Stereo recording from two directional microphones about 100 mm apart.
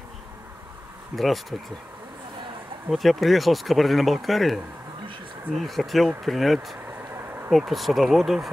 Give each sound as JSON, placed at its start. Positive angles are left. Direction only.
{"t": 1.1, "sound": "speech", "side_deg": 0}
{"t": 2.9, "sound": "speech", "side_deg": 0}